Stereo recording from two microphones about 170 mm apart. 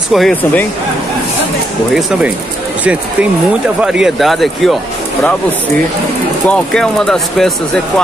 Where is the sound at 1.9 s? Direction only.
Centre (ahead or behind).